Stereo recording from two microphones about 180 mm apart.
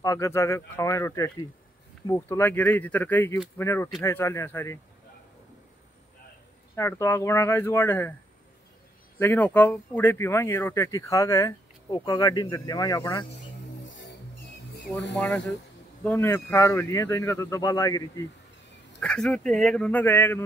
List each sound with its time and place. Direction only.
0.0 s speech: 20° left (ahead or behind)
6.7 s speech: 15° left (ahead or behind)
9.2 s speech: 10° left (ahead or behind)
15.1 s speech: 10° left (ahead or behind)
18.9 s speech: 5° left (ahead or behind)